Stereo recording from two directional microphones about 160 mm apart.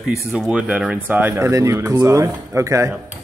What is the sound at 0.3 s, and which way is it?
Speech, 5° right (ahead or behind).